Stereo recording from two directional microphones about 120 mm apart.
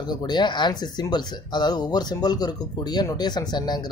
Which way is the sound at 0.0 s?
35° left (ahead or behind).